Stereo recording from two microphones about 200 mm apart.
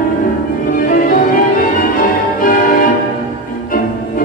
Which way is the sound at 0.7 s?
45° left (ahead or behind).